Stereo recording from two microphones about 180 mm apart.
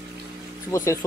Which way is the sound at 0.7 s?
15° left (ahead or behind).